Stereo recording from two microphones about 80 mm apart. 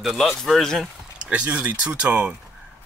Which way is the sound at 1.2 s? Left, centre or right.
Centre.